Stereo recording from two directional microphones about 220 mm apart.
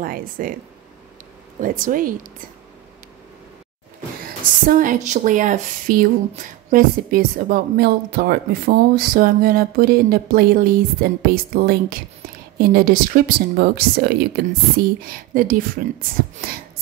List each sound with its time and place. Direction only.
0.0 s speech: 40° right (ahead or behind)
1.6 s speech: 40° right (ahead or behind)
4.6 s speech: 40° right (ahead or behind)